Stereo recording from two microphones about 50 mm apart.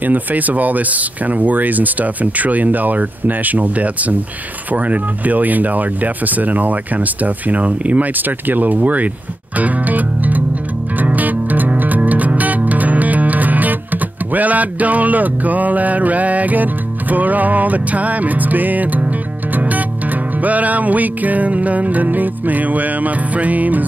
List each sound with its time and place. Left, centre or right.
0.0 s speech: right
11.0 s music: right
20.3 s speech: right